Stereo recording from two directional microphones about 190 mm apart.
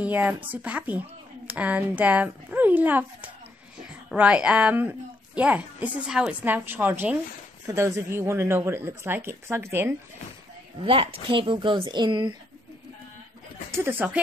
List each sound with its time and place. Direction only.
0.0 s a woman's voice: 10° right (ahead or behind)
10.8 s speech: 30° right (ahead or behind)
13.7 s speech: 10° right (ahead or behind)